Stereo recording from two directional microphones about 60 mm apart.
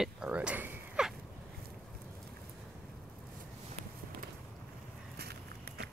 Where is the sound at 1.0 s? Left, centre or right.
Centre.